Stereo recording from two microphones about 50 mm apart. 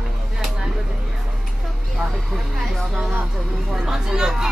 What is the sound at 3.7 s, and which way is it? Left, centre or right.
Speech, centre.